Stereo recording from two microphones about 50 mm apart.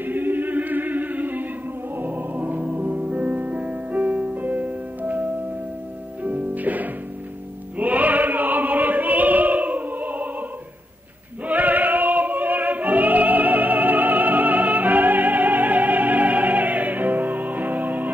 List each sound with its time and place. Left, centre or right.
0.0 s a capella: right
2.0 s music: right
6.2 s music: right
7.7 s opera: right
11.4 s music: right